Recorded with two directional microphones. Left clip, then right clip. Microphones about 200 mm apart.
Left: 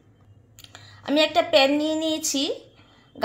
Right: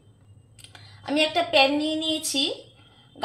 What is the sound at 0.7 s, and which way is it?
A woman's voice, 40° left (ahead or behind).